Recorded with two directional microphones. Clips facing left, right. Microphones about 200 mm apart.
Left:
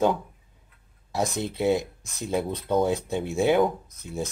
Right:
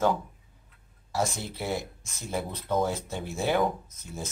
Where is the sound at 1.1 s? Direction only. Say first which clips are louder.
Left 3 dB; 15° left (ahead or behind).